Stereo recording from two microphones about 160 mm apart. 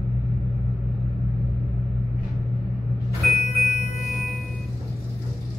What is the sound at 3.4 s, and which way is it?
Music, 45° left (ahead or behind).